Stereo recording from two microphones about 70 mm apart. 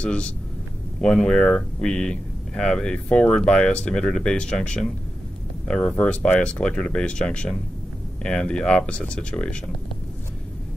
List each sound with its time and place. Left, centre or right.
0.0 s speech: centre